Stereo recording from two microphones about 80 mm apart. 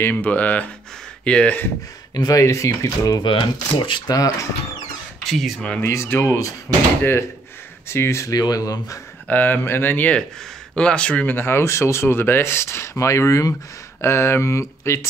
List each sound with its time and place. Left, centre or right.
0.0 s speech: centre
2.1 s speech: left
3.2 s speech: left
4.1 s speech: left
5.2 s speech: centre
5.8 s speech: left
8.4 s speech: left
9.3 s speech: left
10.7 s speech: centre
11.3 s speech: left
14.0 s speech: left